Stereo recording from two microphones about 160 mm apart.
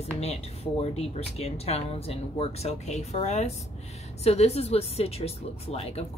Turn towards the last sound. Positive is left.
turn(degrees=40)  # may be behind; listen again after turning